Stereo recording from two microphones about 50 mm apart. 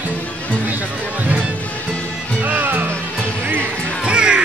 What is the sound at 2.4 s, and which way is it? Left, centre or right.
Music, right.